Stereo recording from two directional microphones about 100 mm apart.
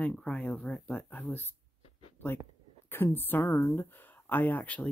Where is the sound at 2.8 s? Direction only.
20° left (ahead or behind).